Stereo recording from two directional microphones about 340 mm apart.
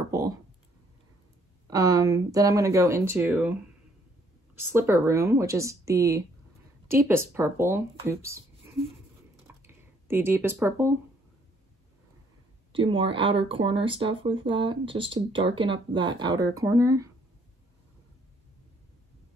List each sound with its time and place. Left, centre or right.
0.1 s clicking: centre
1.7 s speech: centre
4.7 s speech: centre
9.6 s a sound: centre
12.7 s speech: centre